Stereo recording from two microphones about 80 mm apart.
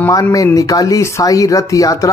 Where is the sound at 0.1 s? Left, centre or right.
Left.